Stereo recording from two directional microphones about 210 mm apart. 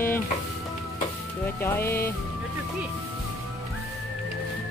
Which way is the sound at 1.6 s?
10° left (ahead or behind).